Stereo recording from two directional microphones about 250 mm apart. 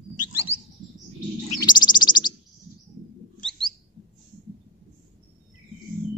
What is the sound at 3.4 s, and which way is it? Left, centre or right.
Bird, centre.